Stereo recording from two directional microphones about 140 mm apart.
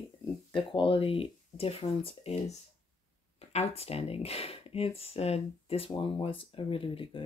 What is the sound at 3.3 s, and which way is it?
Speech, 45° left (ahead or behind).